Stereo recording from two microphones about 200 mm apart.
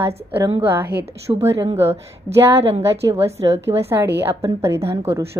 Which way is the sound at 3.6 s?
10° right (ahead or behind).